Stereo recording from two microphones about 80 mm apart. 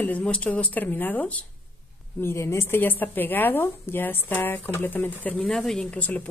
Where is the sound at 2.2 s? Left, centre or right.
Left.